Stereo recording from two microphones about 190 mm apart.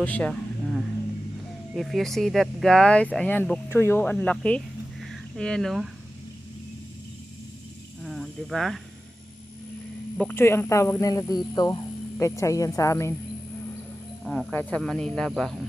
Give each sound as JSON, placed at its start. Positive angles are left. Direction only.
{"t": 0.0, "sound": "speech", "side_deg": 5}
{"t": 1.8, "sound": "speech", "side_deg": 0}
{"t": 8.0, "sound": "speech", "side_deg": 0}
{"t": 10.1, "sound": "speech", "side_deg": 10}
{"t": 14.2, "sound": "speech", "side_deg": 0}